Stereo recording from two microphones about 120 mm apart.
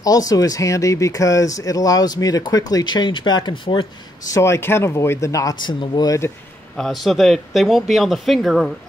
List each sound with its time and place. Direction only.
0.0 s speech: 30° left (ahead or behind)
4.3 s speech: 20° left (ahead or behind)
5.6 s speech: 40° left (ahead or behind)
6.8 s a man's voice: centre (ahead or behind)